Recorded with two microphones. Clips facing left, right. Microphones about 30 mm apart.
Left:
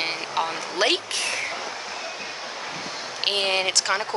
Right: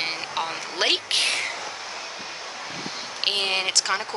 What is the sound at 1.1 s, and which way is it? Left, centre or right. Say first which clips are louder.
Speech: right 3 dB; right.